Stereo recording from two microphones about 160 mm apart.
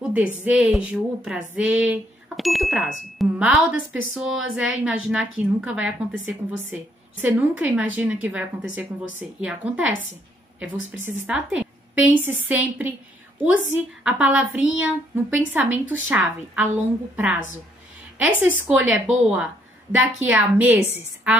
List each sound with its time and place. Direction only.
0.0 s a woman's voice: 10° right (ahead or behind)